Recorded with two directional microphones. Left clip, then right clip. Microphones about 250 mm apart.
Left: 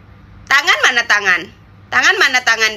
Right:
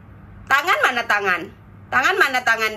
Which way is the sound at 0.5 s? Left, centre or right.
Centre.